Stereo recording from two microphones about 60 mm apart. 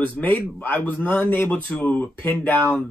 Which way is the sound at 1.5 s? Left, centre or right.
Left.